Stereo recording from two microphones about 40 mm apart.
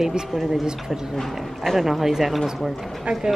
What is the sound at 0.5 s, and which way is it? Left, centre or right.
A woman's voice, centre.